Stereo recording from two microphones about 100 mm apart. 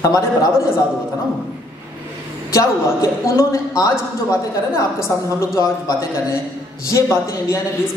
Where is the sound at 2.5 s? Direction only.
30° left (ahead or behind).